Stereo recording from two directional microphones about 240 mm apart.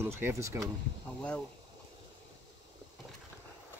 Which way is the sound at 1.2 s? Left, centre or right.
Centre.